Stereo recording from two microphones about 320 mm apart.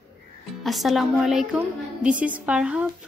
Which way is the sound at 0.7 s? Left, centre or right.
Centre.